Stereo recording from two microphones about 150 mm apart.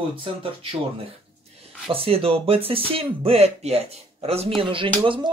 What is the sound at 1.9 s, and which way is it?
Speech, 40° right (ahead or behind).